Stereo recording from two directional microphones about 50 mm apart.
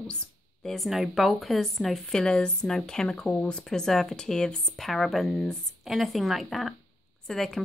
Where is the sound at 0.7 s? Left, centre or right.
Centre.